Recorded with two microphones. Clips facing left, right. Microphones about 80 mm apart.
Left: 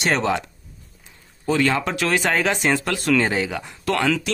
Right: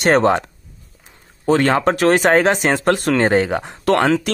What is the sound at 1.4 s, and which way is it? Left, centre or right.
Speech, right.